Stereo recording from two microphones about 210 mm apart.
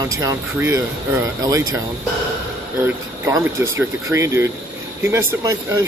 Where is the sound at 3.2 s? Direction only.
15° right (ahead or behind).